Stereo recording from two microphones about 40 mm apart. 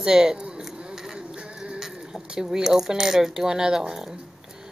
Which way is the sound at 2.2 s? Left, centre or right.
Centre.